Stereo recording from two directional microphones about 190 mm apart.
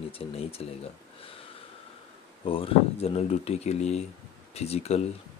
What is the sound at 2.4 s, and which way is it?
Speech, 30° left (ahead or behind).